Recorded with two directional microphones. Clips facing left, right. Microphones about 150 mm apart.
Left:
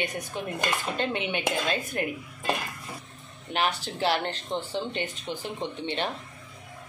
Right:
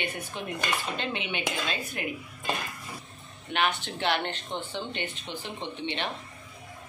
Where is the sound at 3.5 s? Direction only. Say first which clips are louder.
Even; 35° left (ahead or behind).